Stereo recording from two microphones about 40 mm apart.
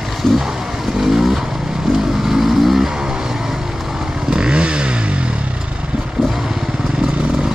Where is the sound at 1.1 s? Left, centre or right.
Centre.